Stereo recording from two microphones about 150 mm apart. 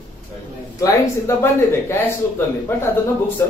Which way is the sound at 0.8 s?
20° left (ahead or behind).